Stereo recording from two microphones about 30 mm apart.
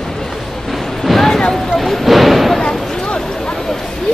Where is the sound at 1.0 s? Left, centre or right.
Centre.